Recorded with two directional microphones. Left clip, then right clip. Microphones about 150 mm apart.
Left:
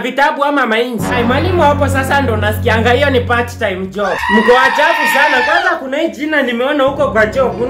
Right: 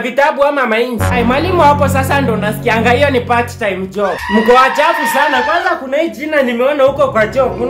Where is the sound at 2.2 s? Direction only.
10° left (ahead or behind).